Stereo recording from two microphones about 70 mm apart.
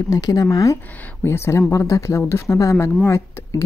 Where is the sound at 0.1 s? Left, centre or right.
Left.